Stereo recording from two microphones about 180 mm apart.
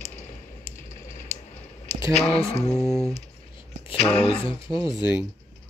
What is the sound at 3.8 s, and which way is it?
Speech, 30° left (ahead or behind).